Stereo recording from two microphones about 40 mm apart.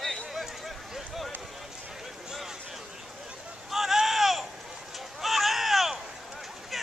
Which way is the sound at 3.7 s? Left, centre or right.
Centre.